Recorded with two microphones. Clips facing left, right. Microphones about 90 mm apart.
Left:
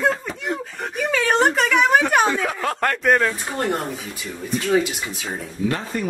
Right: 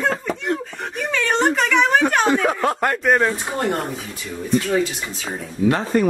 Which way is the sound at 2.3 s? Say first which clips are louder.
Right 5 dB; 20° right (ahead or behind).